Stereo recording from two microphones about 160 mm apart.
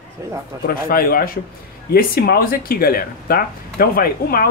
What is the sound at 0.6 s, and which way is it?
Speech, 65° left (ahead or behind).